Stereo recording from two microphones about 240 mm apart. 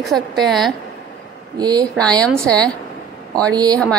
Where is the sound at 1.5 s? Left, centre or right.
Centre.